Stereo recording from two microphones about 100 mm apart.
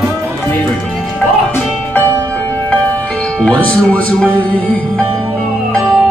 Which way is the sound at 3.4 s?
10° left (ahead or behind).